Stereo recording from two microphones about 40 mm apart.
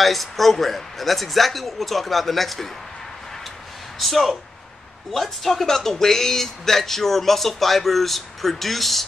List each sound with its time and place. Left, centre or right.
0.0 s speech: centre
4.0 s speech: centre